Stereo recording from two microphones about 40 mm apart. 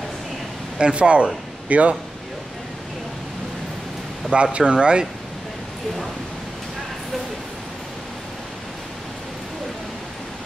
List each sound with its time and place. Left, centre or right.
0.7 s speech: right
4.3 s speech: right